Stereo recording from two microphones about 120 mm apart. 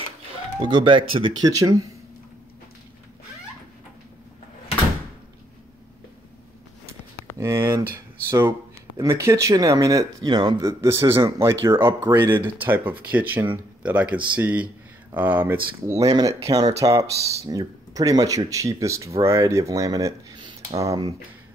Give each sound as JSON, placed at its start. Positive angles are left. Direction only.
{"t": 0.6, "sound": "speech", "side_deg": -40}
{"t": 1.5, "sound": "speech", "side_deg": -30}
{"t": 7.3, "sound": "speech", "side_deg": -20}
{"t": 10.6, "sound": "speech", "side_deg": -25}
{"t": 20.3, "sound": "a sound", "side_deg": -40}
{"t": 20.8, "sound": "speech", "side_deg": -30}